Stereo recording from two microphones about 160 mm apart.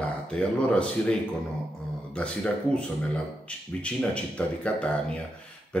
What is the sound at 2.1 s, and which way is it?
Speech, 5° left (ahead or behind).